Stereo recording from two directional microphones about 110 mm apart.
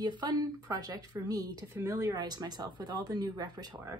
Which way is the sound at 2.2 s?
40° right (ahead or behind).